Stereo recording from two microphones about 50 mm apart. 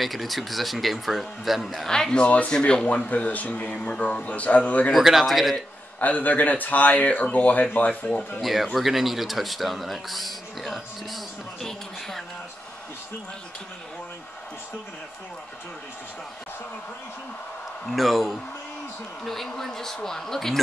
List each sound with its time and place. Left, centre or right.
0.0 s speech: centre
1.9 s speech: centre; by 4.9 s left
4.9 s speech: centre
5.9 s speech: left
8.4 s speech: centre
17.8 s speech: centre